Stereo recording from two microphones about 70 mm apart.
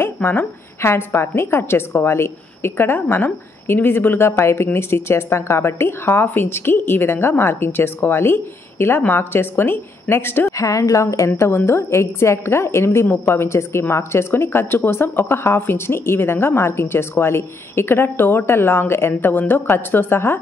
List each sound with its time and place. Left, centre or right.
0.0 s a woman's voice: left
10.5 s a woman's voice: left